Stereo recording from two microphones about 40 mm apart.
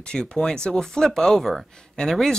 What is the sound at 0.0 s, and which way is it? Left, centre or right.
Speech, left.